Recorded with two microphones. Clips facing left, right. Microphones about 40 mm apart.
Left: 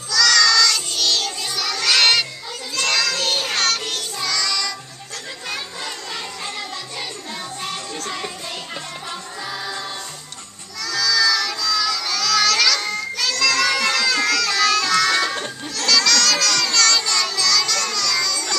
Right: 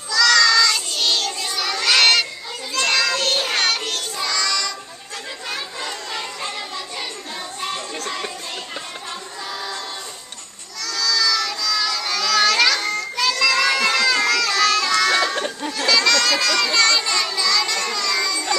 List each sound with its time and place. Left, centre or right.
0.1 s child singing: centre
2.7 s music: centre
3.8 s child singing: centre
4.3 s music: centre
7.6 s music: centre
10.8 s child singing: centre
13.1 s a sound: centre
15.4 s a sound: centre